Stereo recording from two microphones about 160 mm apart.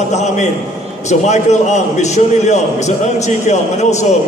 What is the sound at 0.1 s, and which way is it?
A man's voice, 45° left (ahead or behind).